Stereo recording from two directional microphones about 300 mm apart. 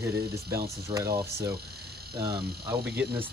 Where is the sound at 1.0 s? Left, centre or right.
Right.